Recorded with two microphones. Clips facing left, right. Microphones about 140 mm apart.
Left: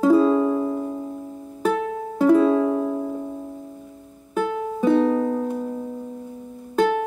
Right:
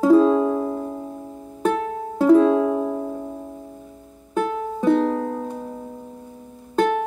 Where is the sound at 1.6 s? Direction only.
Centre (ahead or behind); by 3.7 s 15° right (ahead or behind).